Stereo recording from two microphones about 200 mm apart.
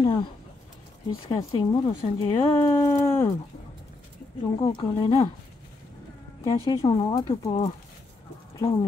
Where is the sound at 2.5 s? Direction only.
15° left (ahead or behind).